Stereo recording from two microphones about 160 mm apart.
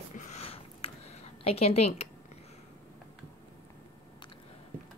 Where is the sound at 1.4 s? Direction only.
40° left (ahead or behind).